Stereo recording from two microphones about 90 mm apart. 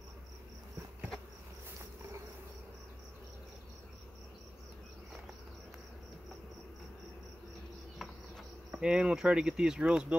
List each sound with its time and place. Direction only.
8.0 s cricket: 5° right (ahead or behind)